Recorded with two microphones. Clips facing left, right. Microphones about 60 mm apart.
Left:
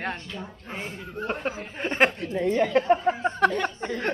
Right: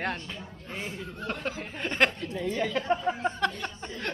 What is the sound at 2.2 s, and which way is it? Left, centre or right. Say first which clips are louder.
A woman's voice: left 6 dB; left.